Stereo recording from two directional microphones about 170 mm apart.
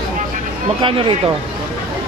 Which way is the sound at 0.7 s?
30° right (ahead or behind).